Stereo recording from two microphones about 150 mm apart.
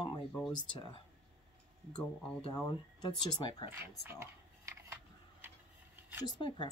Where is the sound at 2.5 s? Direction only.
30° left (ahead or behind).